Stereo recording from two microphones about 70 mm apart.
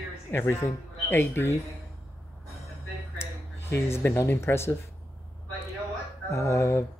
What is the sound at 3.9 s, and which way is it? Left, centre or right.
Speech, left.